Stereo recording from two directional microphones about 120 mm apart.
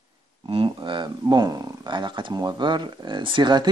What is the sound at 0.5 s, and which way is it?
Speech, 50° right (ahead or behind).